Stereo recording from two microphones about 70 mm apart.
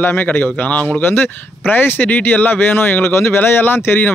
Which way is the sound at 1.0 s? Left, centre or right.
Left.